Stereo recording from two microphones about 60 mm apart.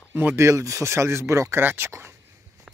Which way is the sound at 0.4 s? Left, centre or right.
Right.